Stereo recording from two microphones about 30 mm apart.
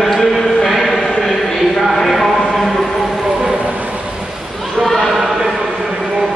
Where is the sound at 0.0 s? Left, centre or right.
Centre.